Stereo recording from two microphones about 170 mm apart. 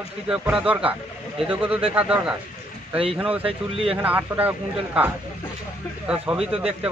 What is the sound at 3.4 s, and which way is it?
Speech, 35° right (ahead or behind).